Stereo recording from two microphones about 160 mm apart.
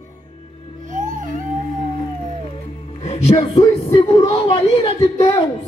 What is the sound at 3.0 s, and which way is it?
A woman's voice, 40° left (ahead or behind).